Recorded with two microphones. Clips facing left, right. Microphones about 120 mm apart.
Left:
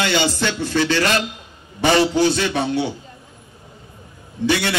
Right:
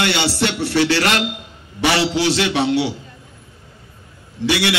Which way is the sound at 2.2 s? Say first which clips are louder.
Right 1 dB; 75° right (ahead or behind).